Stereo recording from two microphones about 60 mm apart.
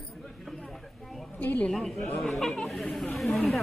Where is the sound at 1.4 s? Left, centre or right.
Left.